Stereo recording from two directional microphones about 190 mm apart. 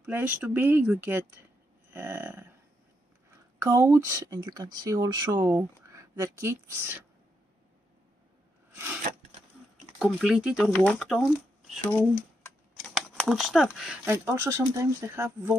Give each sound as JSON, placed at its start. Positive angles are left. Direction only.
{"t": 0.0, "sound": "speech", "side_deg": -10}
{"t": 3.6, "sound": "speech", "side_deg": -15}
{"t": 9.9, "sound": "speech", "side_deg": -5}
{"t": 14.0, "sound": "speech", "side_deg": -10}